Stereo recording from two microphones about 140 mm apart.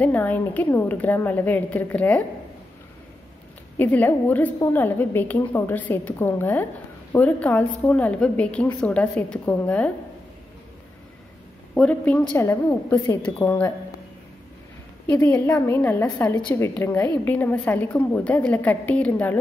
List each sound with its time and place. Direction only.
0.0 s a woman's voice: 10° left (ahead or behind)
3.7 s a woman's voice: 10° left (ahead or behind)
11.7 s a woman's voice: 5° left (ahead or behind)
15.0 s a woman's voice: 10° left (ahead or behind)